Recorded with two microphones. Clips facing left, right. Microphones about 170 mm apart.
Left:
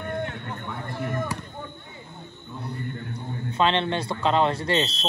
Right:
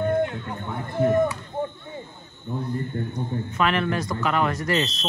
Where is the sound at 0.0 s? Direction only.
25° right (ahead or behind).